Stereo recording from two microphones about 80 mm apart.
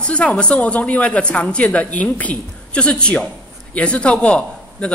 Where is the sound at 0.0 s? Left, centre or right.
Centre.